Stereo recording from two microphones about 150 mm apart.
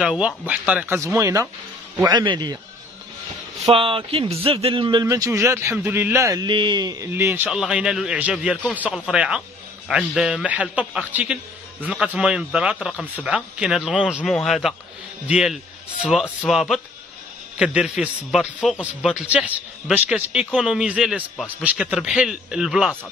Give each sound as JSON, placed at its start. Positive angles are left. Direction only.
{"t": 0.0, "sound": "a man's voice", "side_deg": -5}
{"t": 0.9, "sound": "a man's voice", "side_deg": -20}
{"t": 2.0, "sound": "a man's voice", "side_deg": -30}
{"t": 3.6, "sound": "speech", "side_deg": -35}
{"t": 5.0, "sound": "a man's voice", "side_deg": -20}
{"t": 7.1, "sound": "a man's voice", "side_deg": -15}